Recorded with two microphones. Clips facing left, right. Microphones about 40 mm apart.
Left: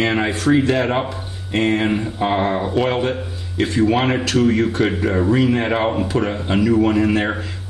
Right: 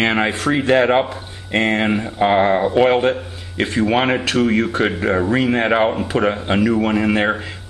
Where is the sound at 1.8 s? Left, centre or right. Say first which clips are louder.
Right 3 dB; centre.